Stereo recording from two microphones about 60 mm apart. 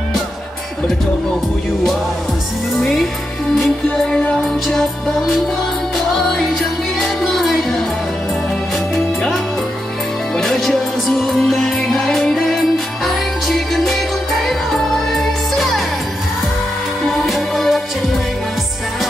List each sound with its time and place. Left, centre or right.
3.9 s music: centre
10.3 s music: centre
17.3 s music: centre